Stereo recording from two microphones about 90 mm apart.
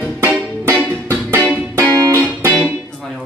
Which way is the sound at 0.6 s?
25° right (ahead or behind).